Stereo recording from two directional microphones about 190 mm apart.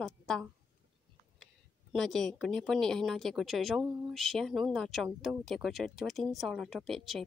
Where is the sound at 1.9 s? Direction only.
Centre (ahead or behind).